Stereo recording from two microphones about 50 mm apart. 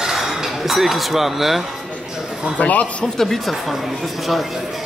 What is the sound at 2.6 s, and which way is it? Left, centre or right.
Speech, left.